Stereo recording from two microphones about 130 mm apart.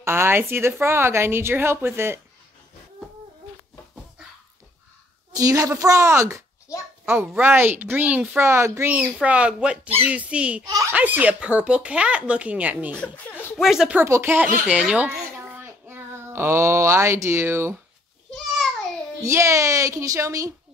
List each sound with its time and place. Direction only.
0.0 s a woman's voice: 20° right (ahead or behind)
5.3 s a woman's voice: 25° right (ahead or behind); by 12.9 s 10° right (ahead or behind)
13.2 s a sound: 15° left (ahead or behind)
13.6 s speech: centre (ahead or behind)
14.0 s speech: 20° right (ahead or behind)
19.2 s a woman's voice: 25° right (ahead or behind)